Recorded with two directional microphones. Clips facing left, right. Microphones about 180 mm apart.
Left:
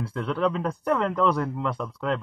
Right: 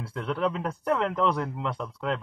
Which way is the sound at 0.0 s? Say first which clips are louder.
Left 3 dB; 5° right (ahead or behind).